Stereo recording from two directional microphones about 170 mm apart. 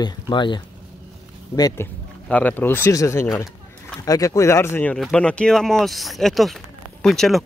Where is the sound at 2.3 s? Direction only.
10° left (ahead or behind).